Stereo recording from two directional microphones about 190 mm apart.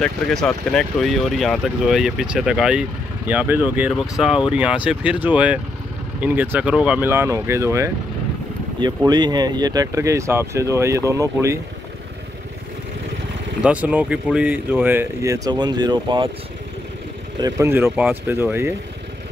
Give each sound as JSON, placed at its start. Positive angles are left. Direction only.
{"t": 0.0, "sound": "speech", "side_deg": 0}
{"t": 13.6, "sound": "speech", "side_deg": -5}
{"t": 17.4, "sound": "speech", "side_deg": -15}